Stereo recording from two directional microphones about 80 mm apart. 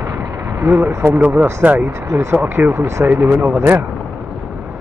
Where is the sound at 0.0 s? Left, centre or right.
Right.